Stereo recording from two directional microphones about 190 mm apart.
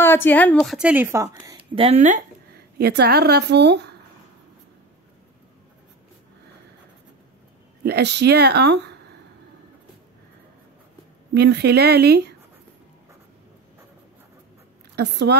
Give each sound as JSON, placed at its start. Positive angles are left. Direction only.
{"t": 0.0, "sound": "a woman's voice", "side_deg": 10}
{"t": 0.6, "sound": "speech", "side_deg": -5}
{"t": 2.5, "sound": "speech", "side_deg": -60}
{"t": 7.8, "sound": "speech", "side_deg": -60}
{"t": 11.3, "sound": "speech", "side_deg": -60}
{"t": 15.0, "sound": "speech", "side_deg": -60}